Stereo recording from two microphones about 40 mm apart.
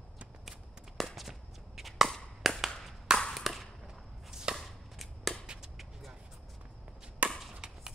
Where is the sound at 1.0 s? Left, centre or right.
Centre.